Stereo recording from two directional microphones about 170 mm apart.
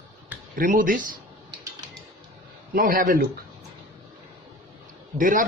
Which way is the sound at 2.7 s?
55° right (ahead or behind).